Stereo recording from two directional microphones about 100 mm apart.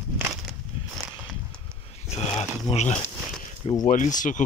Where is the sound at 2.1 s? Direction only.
90° left.